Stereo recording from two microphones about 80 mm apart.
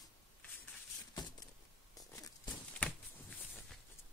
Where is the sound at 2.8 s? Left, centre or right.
Centre.